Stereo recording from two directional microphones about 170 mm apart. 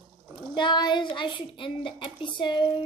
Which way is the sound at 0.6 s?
25° left (ahead or behind).